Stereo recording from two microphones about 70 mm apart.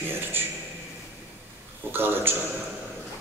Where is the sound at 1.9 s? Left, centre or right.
Right.